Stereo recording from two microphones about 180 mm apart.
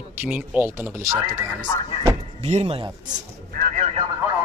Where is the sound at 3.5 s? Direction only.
50° right (ahead or behind).